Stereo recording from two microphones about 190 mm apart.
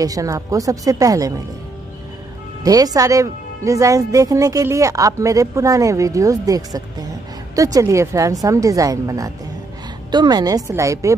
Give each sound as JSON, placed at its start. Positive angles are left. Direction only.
{"t": 0.0, "sound": "a woman's voice", "side_deg": -20}
{"t": 2.6, "sound": "a woman's voice", "side_deg": -20}